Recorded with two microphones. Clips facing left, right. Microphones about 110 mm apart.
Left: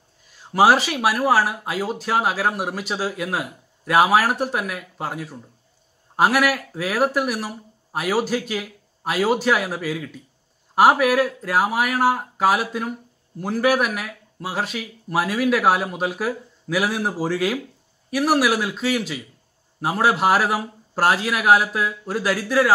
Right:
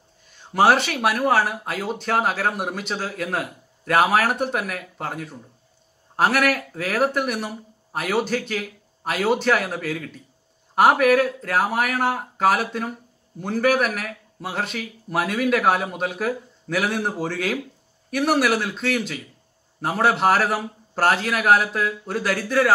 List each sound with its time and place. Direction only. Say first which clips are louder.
0.3 s speech: left 1 dB; 5° left (ahead or behind)